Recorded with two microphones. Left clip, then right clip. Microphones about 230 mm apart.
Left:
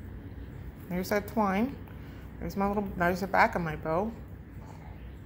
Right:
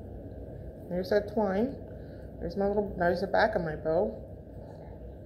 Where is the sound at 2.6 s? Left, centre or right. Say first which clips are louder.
Right 1 dB; left.